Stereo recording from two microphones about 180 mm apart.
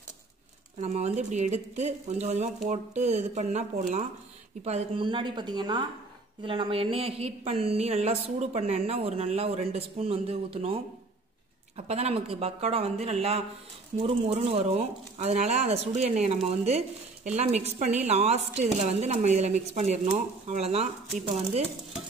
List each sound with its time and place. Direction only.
0.7 s a woman's voice: 35° right (ahead or behind)